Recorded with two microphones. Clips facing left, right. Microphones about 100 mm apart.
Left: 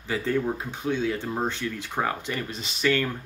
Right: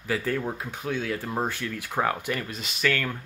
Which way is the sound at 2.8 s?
10° left (ahead or behind).